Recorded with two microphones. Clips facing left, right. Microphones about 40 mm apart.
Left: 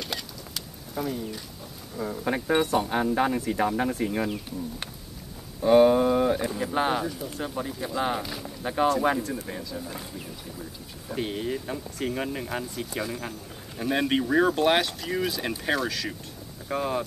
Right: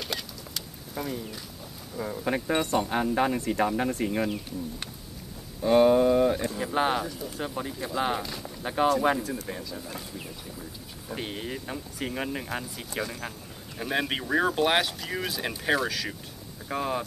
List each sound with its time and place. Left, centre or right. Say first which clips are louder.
0.0 s bird: even; centre
2.0 s speech: left 1 dB; centre
5.6 s speech: left 2 dB; centre
6.6 s speech: left 1 dB; centre
8.2 s speech: left 1 dB; centre
8.6 s speech: even; centre
11.1 s speech: left 5 dB; centre